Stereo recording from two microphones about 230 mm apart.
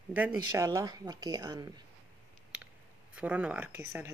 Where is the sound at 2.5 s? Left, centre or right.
Centre.